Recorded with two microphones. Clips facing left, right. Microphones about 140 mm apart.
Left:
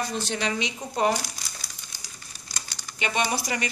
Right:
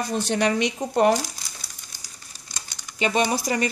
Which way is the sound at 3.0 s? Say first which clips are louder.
Right 5 dB; 35° right (ahead or behind).